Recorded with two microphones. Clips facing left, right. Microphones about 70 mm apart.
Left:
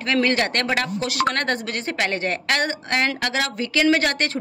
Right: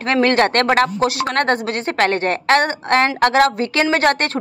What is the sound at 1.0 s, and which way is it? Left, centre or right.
A woman's voice, right.